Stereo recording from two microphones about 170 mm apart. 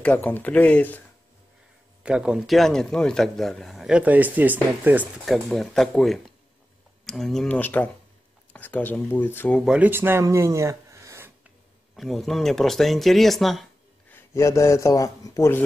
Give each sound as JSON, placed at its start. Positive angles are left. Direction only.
{"t": 0.0, "sound": "speech", "side_deg": 10}
{"t": 2.0, "sound": "a man's voice", "side_deg": -5}
{"t": 9.7, "sound": "speech", "side_deg": -10}
{"t": 11.9, "sound": "a man's voice", "side_deg": 0}
{"t": 14.3, "sound": "speech", "side_deg": 15}